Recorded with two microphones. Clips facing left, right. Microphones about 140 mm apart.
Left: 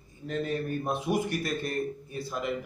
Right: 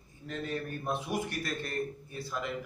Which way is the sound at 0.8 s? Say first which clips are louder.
Left 4 dB; 15° left (ahead or behind).